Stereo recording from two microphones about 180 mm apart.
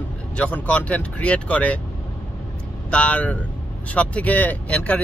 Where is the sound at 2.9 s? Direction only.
5° left (ahead or behind).